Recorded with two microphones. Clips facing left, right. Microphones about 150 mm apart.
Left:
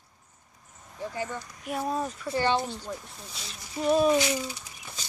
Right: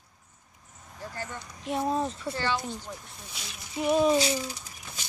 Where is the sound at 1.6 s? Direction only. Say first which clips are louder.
Right 2 dB; 25° right (ahead or behind).